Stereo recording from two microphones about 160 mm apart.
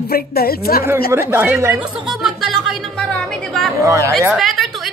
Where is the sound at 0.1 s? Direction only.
70° left (ahead or behind).